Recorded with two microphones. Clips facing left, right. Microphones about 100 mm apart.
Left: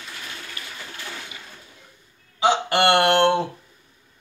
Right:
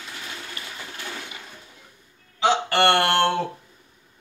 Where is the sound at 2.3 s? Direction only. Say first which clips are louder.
Left 1 dB; 15° left (ahead or behind).